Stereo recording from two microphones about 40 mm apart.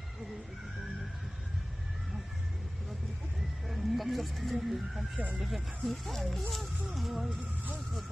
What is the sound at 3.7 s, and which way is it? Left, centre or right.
Speech, centre.